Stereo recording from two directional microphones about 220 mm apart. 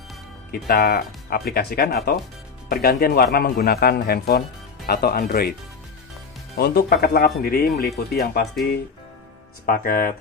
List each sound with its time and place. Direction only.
0.5 s speech: 45° left (ahead or behind)
9.7 s speech: 40° left (ahead or behind)